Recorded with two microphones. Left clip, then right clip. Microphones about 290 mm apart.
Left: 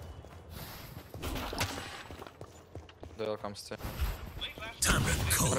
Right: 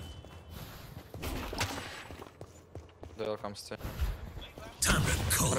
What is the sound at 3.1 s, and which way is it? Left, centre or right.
Artillery fire, centre.